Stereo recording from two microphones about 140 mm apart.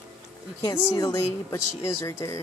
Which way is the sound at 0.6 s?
25° left (ahead or behind).